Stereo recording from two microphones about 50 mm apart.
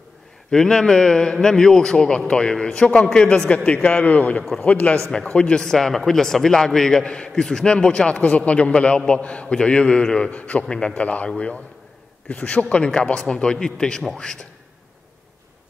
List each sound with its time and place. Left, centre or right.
0.5 s a man's voice: centre; by 10.6 s left
10.6 s a man's voice: centre
11.0 s a man's voice: left; by 14.4 s centre